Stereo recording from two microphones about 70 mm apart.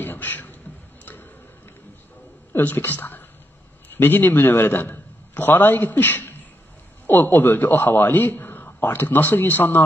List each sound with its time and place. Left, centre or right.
0.0 s beatboxing: left
2.6 s a man's voice: left